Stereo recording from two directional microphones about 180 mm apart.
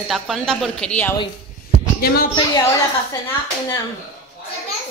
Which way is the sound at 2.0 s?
55° left (ahead or behind).